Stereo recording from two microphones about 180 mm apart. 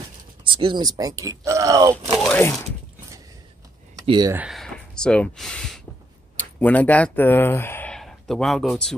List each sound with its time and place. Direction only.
0.4 s speech: 25° right (ahead or behind)
2.1 s a sound: 5° left (ahead or behind)
4.0 s speech: 25° right (ahead or behind)
4.3 s speech: 10° right (ahead or behind)
4.6 s a sound: 5° left (ahead or behind)
6.3 s speech: 10° left (ahead or behind)